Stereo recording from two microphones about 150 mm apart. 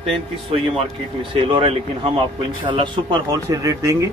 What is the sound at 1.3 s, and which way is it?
A man's voice, 35° right (ahead or behind).